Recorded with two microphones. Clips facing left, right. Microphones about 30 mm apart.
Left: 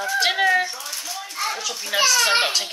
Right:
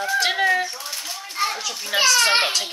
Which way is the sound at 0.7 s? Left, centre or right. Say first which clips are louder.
Even; right.